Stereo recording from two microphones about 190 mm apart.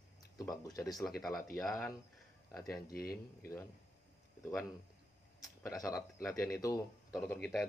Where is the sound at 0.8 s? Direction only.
Centre (ahead or behind).